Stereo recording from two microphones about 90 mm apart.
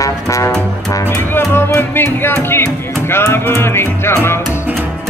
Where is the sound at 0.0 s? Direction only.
35° left (ahead or behind).